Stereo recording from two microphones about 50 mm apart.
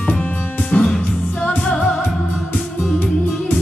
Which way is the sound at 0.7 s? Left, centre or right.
Left.